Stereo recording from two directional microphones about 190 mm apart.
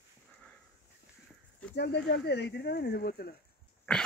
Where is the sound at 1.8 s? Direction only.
60° left (ahead or behind).